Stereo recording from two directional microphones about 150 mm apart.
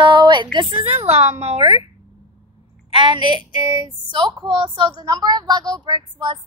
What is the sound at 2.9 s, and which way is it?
A woman's voice, 30° right (ahead or behind).